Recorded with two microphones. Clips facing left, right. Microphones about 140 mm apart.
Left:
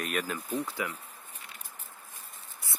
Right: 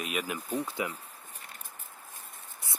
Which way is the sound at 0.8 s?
20° right (ahead or behind).